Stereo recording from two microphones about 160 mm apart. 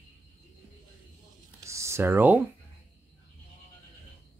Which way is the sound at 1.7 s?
15° right (ahead or behind).